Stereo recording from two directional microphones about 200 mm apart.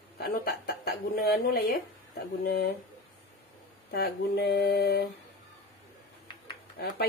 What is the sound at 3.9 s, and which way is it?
Speech, 50° left (ahead or behind).